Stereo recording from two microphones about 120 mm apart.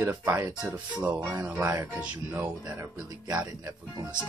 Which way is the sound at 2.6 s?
30° right (ahead or behind).